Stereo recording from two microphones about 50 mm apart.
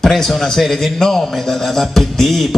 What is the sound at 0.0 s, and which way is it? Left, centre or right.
A man's voice, centre.